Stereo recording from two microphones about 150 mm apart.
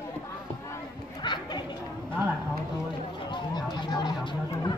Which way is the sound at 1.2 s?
30° left (ahead or behind).